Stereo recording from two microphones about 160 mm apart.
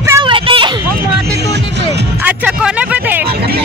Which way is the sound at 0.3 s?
30° right (ahead or behind).